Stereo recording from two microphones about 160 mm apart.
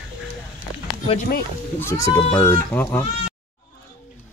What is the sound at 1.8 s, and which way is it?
Speech, 20° left (ahead or behind).